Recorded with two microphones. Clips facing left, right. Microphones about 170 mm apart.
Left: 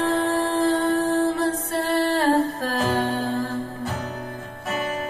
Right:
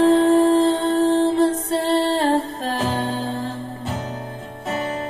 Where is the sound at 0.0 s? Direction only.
30° right (ahead or behind).